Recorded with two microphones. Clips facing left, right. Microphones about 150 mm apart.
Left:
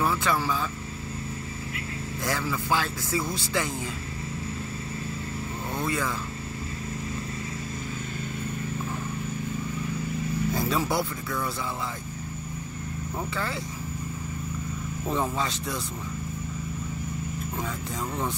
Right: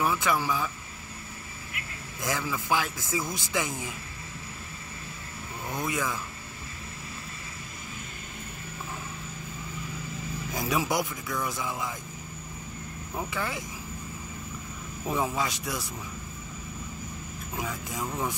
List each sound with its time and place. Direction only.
0.0 s a man's voice: 15° right (ahead or behind)
2.2 s a man's voice: 15° right (ahead or behind)
5.8 s a man's voice: 15° right (ahead or behind)
10.5 s speech: 15° right (ahead or behind)
13.3 s a man's voice: 15° right (ahead or behind)
15.0 s a man's voice: 10° right (ahead or behind)
17.6 s a man's voice: 10° right (ahead or behind)